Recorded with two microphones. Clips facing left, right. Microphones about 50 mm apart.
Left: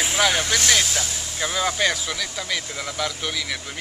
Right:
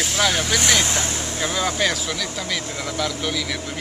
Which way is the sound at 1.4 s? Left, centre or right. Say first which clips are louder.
Even; centre.